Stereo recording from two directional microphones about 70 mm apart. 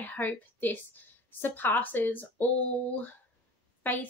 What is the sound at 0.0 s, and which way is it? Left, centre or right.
A woman's voice, left.